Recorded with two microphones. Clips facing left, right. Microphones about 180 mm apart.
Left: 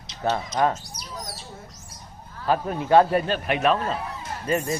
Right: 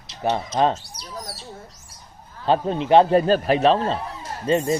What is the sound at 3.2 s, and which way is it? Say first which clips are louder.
Speech: right 6 dB; 35° right (ahead or behind).